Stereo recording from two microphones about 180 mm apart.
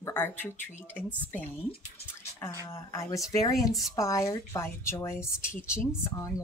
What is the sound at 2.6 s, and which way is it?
Speech, 15° left (ahead or behind).